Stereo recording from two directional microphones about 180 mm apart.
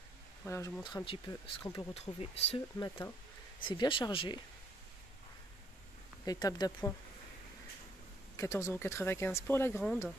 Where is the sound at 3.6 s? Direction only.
25° left (ahead or behind).